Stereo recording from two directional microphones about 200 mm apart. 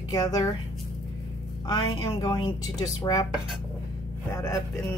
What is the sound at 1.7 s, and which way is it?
Speech, 20° left (ahead or behind).